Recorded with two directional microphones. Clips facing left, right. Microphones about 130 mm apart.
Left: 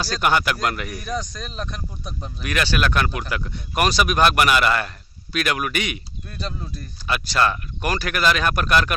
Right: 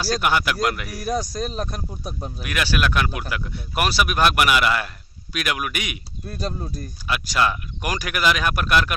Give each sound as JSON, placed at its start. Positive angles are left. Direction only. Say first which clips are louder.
{"t": 0.0, "sound": "speech", "louder": "left 1 dB", "side_deg": -5}
{"t": 1.3, "sound": "speech", "louder": "right 5 dB", "side_deg": -40}
{"t": 2.4, "sound": "speech", "louder": "left 1 dB", "side_deg": -5}
{"t": 6.2, "sound": "speech", "louder": "right 4 dB", "side_deg": -40}
{"t": 7.1, "sound": "speech", "louder": "left 1 dB", "side_deg": -5}